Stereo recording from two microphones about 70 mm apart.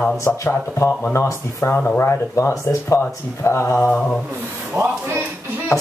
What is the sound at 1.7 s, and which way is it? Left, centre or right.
Speech, left.